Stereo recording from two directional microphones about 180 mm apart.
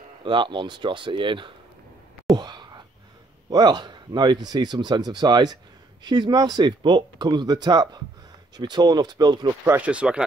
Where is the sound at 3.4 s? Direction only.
25° right (ahead or behind).